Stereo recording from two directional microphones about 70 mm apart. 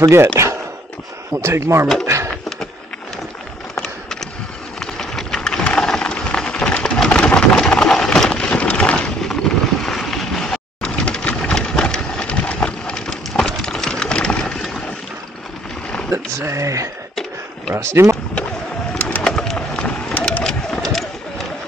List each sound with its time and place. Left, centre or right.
0.1 s speech: right
4.7 s a sound: centre
9.3 s vehicle: centre
16.1 s speech: right
17.1 s a sound: centre
17.7 s speech: right
18.9 s bird: centre
19.3 s run: centre
19.7 s a sound: centre